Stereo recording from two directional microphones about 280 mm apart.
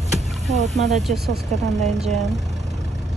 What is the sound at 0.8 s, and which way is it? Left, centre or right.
Speech, right.